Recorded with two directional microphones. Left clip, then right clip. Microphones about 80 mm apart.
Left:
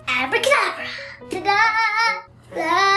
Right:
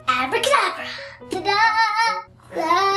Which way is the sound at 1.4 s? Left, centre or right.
Centre.